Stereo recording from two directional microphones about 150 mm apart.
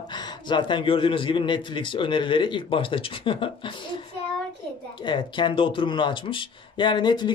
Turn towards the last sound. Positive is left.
turn(degrees=30)  # may be behind; listen again after turning